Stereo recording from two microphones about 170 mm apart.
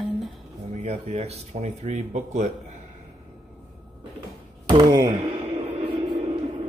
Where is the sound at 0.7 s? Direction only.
40° right (ahead or behind).